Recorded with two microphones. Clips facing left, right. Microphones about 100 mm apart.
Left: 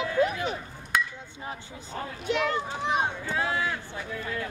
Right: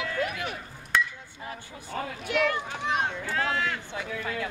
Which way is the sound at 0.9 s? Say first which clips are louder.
Right 1 dB; 10° left (ahead or behind).